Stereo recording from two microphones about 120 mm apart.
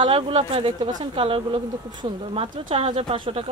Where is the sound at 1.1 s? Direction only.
50° right (ahead or behind).